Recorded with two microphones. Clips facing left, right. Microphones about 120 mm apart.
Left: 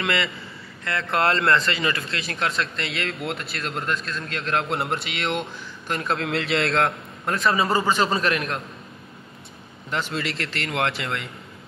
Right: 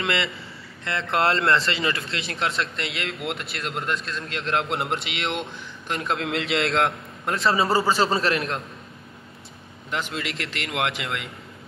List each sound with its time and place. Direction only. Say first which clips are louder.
0.0 s a man's voice: left 1 dB; 25° right (ahead or behind)
9.8 s a man's voice: left 2 dB; 10° right (ahead or behind)